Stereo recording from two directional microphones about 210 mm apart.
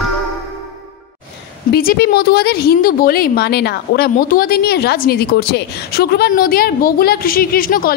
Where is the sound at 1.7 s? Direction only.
45° left (ahead or behind).